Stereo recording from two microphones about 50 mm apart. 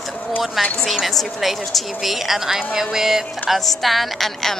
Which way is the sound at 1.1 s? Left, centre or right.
Centre.